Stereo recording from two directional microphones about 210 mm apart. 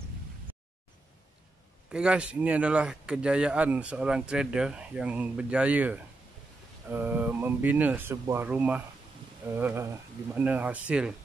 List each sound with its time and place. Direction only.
1.9 s speech: 5° right (ahead or behind)